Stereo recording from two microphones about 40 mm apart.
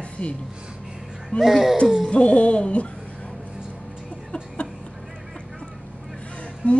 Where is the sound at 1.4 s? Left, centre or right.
Centre.